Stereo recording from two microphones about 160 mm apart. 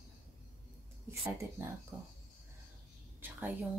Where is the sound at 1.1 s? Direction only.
20° right (ahead or behind).